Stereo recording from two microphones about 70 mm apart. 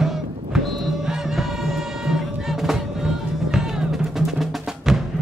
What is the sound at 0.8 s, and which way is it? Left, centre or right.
Music, centre.